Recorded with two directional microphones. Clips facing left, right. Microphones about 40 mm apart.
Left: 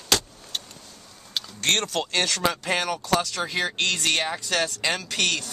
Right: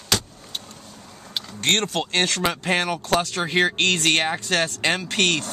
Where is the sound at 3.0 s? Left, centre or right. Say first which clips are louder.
Right 2 dB; right.